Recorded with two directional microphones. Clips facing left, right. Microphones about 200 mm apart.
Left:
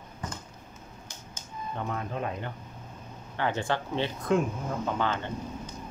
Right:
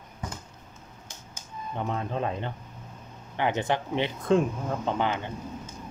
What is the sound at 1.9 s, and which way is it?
Speech, 25° right (ahead or behind).